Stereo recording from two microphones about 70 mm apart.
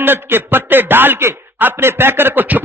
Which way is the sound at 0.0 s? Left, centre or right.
Right.